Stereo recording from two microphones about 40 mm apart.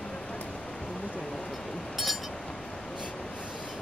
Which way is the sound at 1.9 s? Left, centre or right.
Centre.